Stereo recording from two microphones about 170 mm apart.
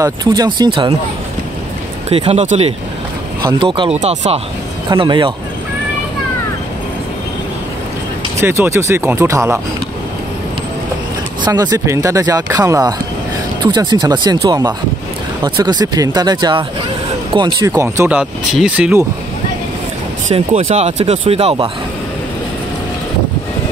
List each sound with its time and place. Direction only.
0.0 s speech: 25° right (ahead or behind)
2.0 s speech: 35° right (ahead or behind)
4.0 s speech: 40° right (ahead or behind)
4.8 s speech: 25° right (ahead or behind)
8.4 s speech: 15° right (ahead or behind)
11.6 s speech: 15° right (ahead or behind)
20.2 s speech: 40° right (ahead or behind)